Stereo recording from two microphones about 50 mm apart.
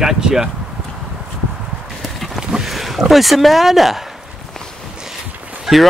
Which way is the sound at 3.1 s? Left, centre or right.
Centre.